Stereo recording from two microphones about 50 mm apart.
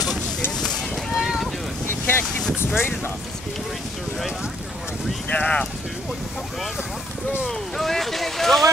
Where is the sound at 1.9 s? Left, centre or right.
Left.